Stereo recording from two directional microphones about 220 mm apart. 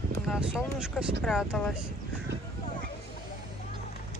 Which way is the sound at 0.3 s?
5° right (ahead or behind).